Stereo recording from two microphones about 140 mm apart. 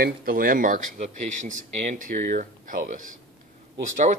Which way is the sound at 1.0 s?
65° right (ahead or behind).